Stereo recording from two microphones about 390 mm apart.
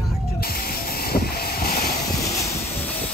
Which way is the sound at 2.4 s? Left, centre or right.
Centre.